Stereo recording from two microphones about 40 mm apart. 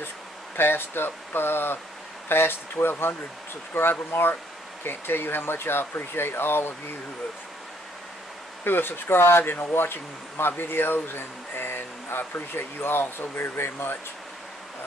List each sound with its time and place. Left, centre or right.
0.6 s speech: left
8.6 s speech: left